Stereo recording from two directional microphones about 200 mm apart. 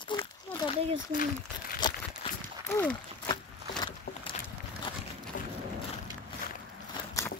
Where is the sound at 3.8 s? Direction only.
25° left (ahead or behind).